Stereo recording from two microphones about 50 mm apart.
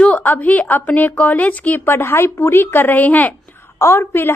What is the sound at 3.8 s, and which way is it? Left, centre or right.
Speech, left.